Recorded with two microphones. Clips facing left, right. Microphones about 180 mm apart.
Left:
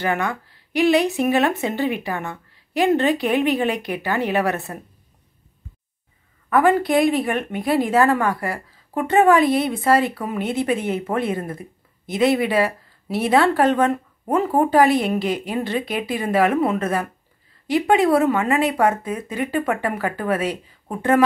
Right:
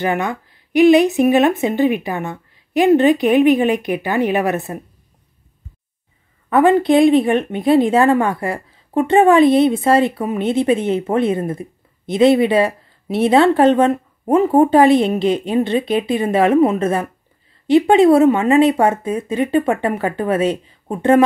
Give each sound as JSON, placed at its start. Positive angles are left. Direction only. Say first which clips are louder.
{"t": 0.0, "sound": "a woman's voice", "louder": "right 3 dB", "side_deg": -20}
{"t": 6.5, "sound": "speech", "louder": "right 5 dB", "side_deg": -25}